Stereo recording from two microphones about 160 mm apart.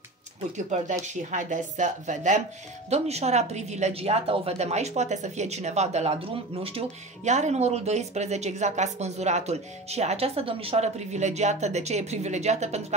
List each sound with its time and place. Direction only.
1.0 s speech: 50° right (ahead or behind)